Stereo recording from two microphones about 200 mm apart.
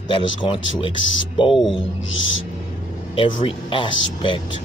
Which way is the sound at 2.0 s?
70° left (ahead or behind).